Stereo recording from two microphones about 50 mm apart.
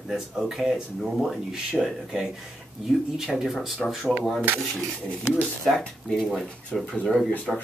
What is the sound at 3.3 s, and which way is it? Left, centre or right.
Speech, centre.